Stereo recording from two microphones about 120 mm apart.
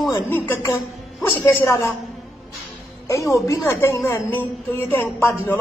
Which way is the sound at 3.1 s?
25° left (ahead or behind).